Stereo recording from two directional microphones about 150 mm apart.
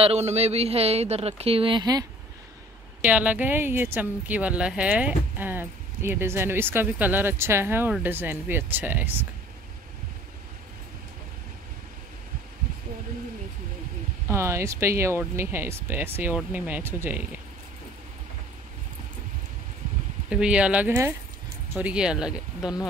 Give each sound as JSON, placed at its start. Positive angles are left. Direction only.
{"t": 0.0, "sound": "a man's voice", "side_deg": -45}
{"t": 3.0, "sound": "speech", "side_deg": -10}
{"t": 14.2, "sound": "speech", "side_deg": -15}
{"t": 20.2, "sound": "speech", "side_deg": -5}